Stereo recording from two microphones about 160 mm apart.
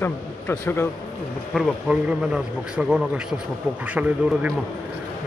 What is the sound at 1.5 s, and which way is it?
A man's voice, 5° right (ahead or behind).